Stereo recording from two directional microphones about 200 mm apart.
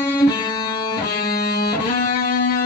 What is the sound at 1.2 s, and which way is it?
Music, 50° left (ahead or behind).